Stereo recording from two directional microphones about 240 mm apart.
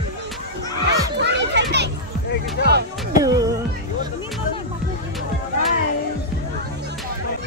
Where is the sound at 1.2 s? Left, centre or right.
Right.